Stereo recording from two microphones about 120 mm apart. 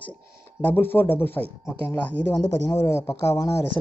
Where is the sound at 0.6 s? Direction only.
15° left (ahead or behind).